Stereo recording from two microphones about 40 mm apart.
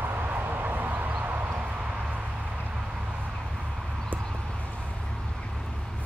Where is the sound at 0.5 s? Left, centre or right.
Right.